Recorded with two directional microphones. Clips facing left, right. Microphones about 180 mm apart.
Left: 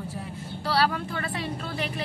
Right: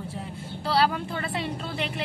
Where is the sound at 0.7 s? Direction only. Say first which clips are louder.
Right 1 dB; 30° right (ahead or behind).